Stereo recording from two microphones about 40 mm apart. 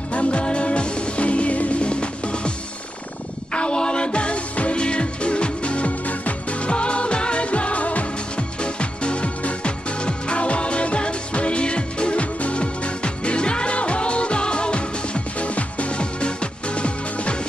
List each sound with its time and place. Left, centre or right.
0.1 s music: left
3.5 s music: left